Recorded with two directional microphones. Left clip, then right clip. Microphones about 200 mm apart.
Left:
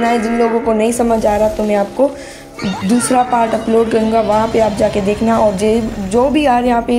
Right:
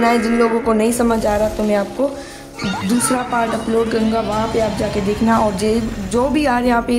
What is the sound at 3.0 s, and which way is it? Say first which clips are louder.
A woman's voice: left 7 dB; 5° left (ahead or behind).